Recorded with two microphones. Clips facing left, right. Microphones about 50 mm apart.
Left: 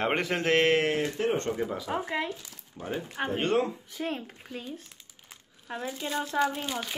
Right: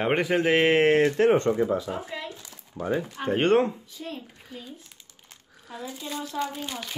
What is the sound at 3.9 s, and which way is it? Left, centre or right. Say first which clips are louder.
Speech: left 4 dB; left.